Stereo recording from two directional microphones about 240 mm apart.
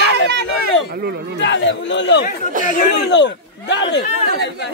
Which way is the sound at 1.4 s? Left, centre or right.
Left.